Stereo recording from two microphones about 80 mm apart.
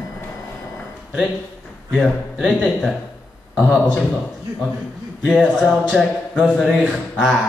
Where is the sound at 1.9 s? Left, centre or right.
Centre.